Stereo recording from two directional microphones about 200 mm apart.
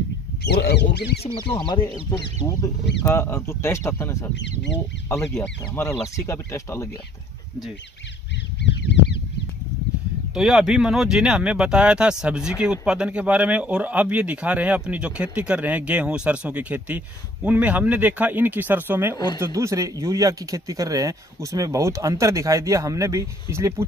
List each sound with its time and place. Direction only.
0.4 s speech: 55° left (ahead or behind)
1.2 s speech: 25° left (ahead or behind)
4.4 s speech: 60° left (ahead or behind)
5.3 s speech: 10° left (ahead or behind)
8.6 s a sound: 60° left (ahead or behind)
10.3 s speech: centre (ahead or behind)
19.1 s speech: 20° left (ahead or behind)
19.4 s speech: 15° right (ahead or behind)